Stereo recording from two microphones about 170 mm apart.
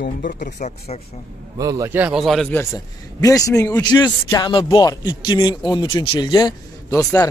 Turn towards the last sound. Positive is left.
turn(degrees=15)  # may be behind; listen again after turning